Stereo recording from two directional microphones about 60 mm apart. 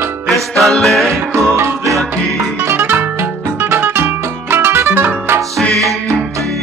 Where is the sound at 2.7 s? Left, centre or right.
Right.